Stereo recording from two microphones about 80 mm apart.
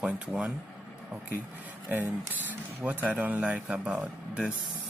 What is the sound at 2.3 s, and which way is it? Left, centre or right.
Speech, right.